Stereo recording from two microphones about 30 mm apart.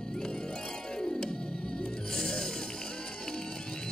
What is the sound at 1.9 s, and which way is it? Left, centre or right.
Music, centre.